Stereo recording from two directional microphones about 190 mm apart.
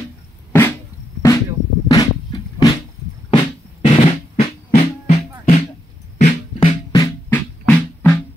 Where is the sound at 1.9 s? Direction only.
20° left (ahead or behind).